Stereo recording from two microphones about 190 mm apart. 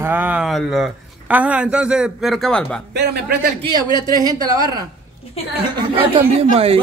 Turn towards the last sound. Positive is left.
turn(degrees=-30)  # may be behind; listen again after turning